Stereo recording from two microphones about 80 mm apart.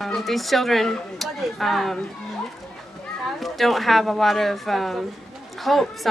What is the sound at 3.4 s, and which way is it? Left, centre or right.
Speech, centre.